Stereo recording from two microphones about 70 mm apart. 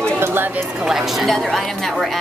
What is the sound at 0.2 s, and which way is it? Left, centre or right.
Chatter, right.